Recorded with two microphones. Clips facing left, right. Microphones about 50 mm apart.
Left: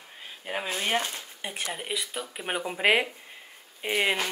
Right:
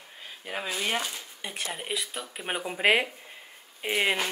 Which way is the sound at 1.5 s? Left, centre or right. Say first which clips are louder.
Even; centre.